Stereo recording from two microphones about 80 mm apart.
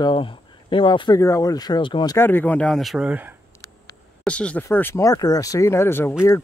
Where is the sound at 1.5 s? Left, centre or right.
Left.